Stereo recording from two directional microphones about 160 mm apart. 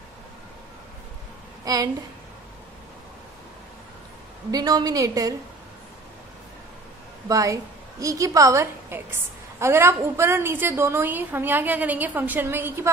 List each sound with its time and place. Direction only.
1.6 s a woman's voice: 20° right (ahead or behind)
4.5 s a woman's voice: 25° right (ahead or behind)
7.2 s a woman's voice: 20° right (ahead or behind)